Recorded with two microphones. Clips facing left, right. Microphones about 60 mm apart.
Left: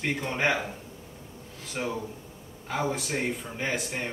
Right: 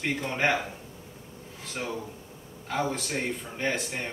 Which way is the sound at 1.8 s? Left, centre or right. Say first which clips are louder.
Left 2 dB; centre.